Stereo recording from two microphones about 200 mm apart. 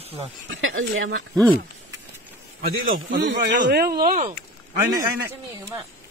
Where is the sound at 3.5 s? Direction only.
45° right (ahead or behind).